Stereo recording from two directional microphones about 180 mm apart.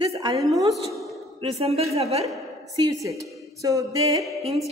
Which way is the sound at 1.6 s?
35° right (ahead or behind).